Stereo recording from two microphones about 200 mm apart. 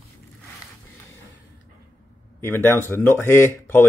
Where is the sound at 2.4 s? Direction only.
10° left (ahead or behind).